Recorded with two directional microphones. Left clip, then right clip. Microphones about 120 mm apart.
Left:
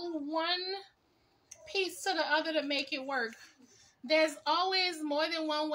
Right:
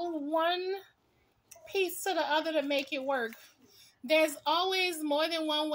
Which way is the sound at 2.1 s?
25° left (ahead or behind).